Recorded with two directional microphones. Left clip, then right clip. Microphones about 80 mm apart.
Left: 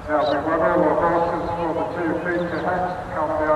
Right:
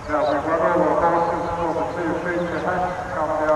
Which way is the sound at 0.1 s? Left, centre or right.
Right.